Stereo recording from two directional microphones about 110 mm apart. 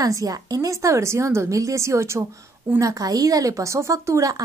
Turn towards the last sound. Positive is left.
turn(degrees=-30)  # may be behind; listen again after turning